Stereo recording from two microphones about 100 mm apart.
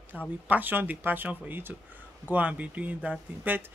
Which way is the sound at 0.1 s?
10° right (ahead or behind).